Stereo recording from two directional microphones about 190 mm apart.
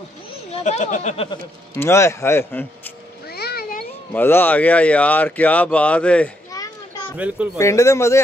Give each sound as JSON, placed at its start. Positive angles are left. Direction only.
{"t": 0.7, "sound": "speech", "side_deg": 40}
{"t": 1.8, "sound": "speech", "side_deg": 15}
{"t": 3.3, "sound": "cat", "side_deg": 55}
{"t": 4.1, "sound": "speech", "side_deg": 10}
{"t": 7.5, "sound": "speech", "side_deg": 15}